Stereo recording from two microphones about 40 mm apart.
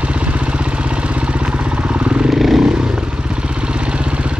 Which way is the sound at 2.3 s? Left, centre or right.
Centre.